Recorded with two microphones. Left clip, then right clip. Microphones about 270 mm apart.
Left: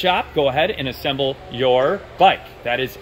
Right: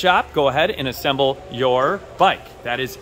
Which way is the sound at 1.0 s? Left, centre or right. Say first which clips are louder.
Right 3 dB; right.